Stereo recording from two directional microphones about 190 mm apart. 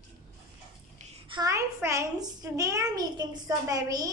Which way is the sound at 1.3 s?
20° right (ahead or behind).